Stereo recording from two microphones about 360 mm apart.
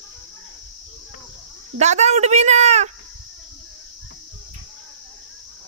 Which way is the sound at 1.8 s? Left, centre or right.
Centre.